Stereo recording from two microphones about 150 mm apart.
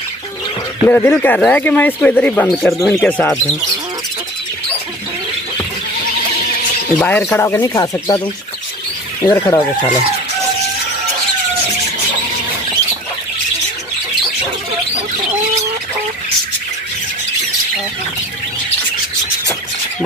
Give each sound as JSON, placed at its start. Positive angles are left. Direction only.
{"t": 0.8, "sound": "speech", "side_deg": 15}
{"t": 7.0, "sound": "speech", "side_deg": 10}
{"t": 9.2, "sound": "speech", "side_deg": 25}